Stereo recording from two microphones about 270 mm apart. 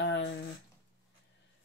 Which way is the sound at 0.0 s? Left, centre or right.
Left.